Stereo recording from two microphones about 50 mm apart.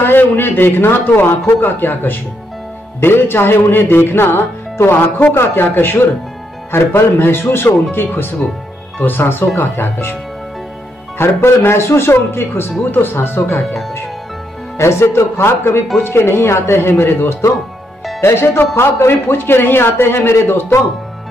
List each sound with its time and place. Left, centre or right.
0.0 s speech: left
3.0 s speech: left
11.1 s speech: left
14.8 s speech: left